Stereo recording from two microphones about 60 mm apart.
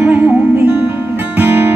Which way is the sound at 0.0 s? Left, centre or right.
Right.